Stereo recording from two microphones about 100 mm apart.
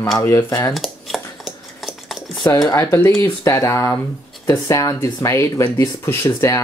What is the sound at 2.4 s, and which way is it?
Speech, 40° left (ahead or behind).